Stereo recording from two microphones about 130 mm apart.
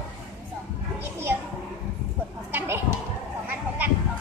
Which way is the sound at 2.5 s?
20° right (ahead or behind).